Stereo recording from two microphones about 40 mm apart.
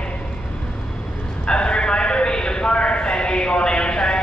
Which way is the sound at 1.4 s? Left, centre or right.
Left.